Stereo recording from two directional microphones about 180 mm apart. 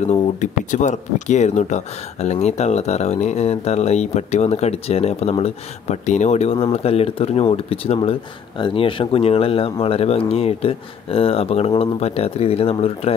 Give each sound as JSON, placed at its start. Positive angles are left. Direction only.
{"t": 0.0, "sound": "speech", "side_deg": 40}